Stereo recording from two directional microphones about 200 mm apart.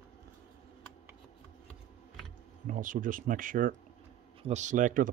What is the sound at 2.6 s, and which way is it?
Speech, 40° right (ahead or behind).